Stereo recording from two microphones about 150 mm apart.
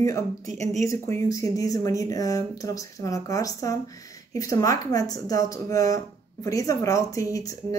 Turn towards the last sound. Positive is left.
turn(degrees=20)  # may be behind; listen again after turning